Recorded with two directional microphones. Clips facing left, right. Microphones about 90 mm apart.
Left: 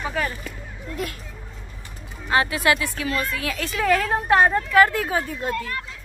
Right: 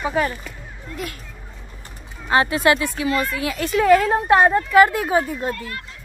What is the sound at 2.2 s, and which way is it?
Speech, 30° right (ahead or behind).